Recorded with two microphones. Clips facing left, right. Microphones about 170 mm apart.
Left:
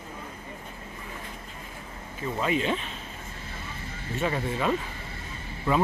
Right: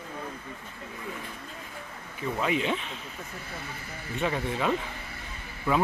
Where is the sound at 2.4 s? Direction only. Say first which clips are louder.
Left 1 dB; 10° right (ahead or behind).